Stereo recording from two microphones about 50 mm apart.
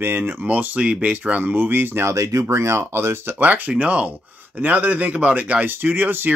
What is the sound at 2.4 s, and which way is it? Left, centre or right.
Speech, right.